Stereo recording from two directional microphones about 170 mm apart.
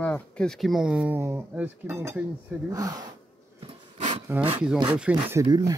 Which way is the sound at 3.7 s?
40° right (ahead or behind).